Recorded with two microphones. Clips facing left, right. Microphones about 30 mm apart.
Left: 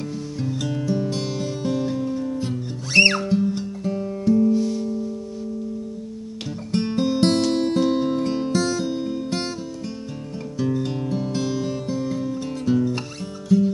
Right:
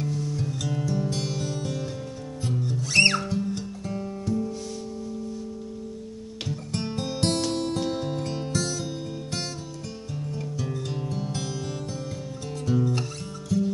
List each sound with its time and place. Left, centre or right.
0.0 s music: centre
6.7 s music: centre
10.6 s music: centre